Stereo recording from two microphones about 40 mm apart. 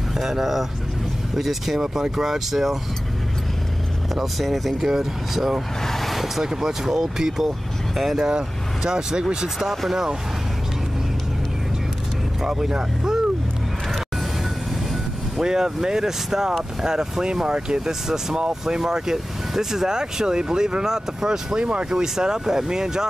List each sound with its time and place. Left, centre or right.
0.2 s speech: centre
4.1 s speech: centre
5.9 s speech: centre
8.3 s speech: centre
9.6 s speech: centre
12.4 s speech: centre
15.3 s speech: centre
21.5 s speech: right
21.9 s speech: centre